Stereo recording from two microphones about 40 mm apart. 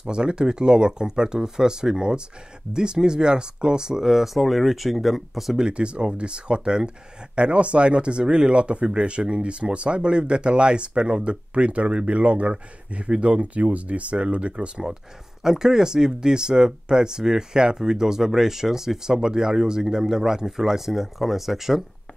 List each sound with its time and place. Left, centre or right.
0.1 s speech: right; by 5.6 s centre
5.6 s speech: right
15.4 s speech: centre